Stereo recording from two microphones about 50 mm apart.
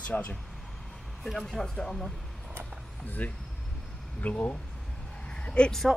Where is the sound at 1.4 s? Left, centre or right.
Centre.